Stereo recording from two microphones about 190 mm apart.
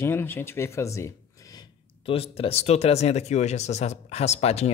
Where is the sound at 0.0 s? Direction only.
10° left (ahead or behind).